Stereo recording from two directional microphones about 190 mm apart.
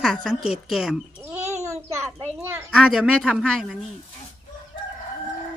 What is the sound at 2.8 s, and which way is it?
Speech, centre (ahead or behind).